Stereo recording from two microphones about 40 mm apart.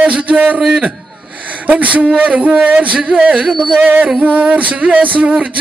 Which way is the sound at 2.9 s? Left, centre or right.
Right.